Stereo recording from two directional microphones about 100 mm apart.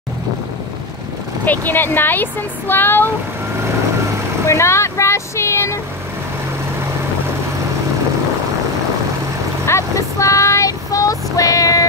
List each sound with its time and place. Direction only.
1.4 s speech: 15° left (ahead or behind)
4.5 s speech: 30° left (ahead or behind)
9.7 s child singing: 30° left (ahead or behind)